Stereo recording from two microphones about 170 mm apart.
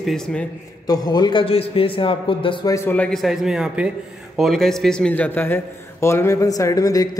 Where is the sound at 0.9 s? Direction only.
25° left (ahead or behind).